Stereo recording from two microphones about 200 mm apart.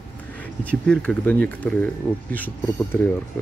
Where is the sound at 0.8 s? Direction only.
5° left (ahead or behind).